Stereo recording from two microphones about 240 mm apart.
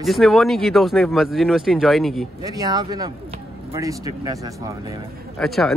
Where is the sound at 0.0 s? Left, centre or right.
Centre.